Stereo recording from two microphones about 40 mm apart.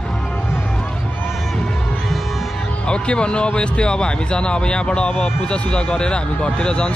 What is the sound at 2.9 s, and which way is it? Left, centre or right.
Speech, left.